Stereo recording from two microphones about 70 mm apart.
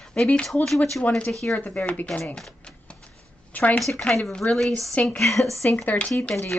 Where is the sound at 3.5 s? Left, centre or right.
Left.